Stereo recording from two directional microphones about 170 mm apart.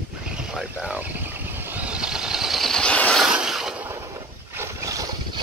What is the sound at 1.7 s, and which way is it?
Vehicle, 10° right (ahead or behind).